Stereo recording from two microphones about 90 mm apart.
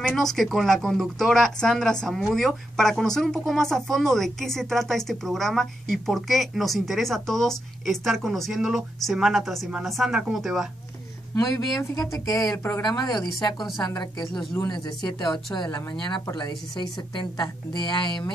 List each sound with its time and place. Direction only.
0.1 s speech: 5° left (ahead or behind)
11.3 s speech: 40° left (ahead or behind)
14.2 s speech: 5° left (ahead or behind)
15.0 s a woman's voice: 55° left (ahead or behind)